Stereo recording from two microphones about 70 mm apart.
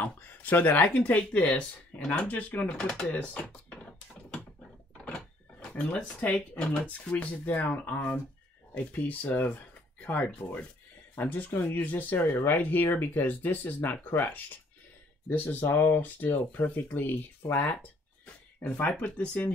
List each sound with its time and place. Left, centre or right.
0.0 s speech: left
3.2 s a sound: centre
4.9 s door: centre
6.3 s speech: centre